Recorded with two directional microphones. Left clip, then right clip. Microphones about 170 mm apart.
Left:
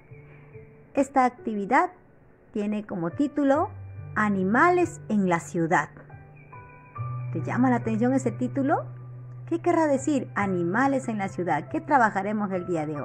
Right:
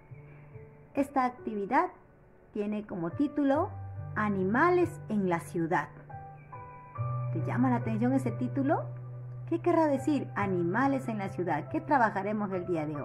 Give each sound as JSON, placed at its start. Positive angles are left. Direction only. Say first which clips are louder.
{"t": 0.9, "sound": "a woman's voice", "louder": "left 7 dB", "side_deg": 25}
{"t": 7.2, "sound": "a woman's voice", "louder": "left 6 dB", "side_deg": 30}